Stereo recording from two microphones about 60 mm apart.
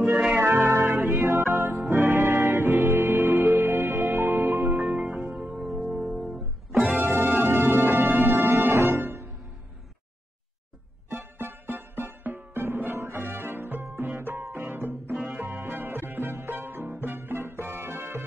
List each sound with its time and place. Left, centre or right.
0.4 s music: right
1.3 s music: right
4.8 s music: centre
6.9 s music: right
11.1 s music: right